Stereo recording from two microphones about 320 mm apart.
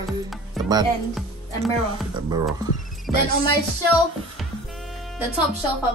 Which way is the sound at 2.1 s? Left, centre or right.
Centre.